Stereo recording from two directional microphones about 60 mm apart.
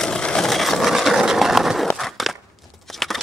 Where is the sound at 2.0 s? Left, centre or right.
Centre.